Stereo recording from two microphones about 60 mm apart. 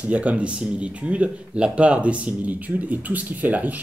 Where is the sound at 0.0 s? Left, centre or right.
Right.